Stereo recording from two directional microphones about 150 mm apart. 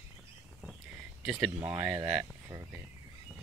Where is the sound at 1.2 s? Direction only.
5° right (ahead or behind).